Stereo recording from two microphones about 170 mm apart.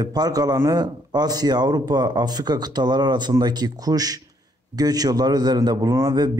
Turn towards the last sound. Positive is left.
turn(degrees=-20)  # may be behind; listen again after turning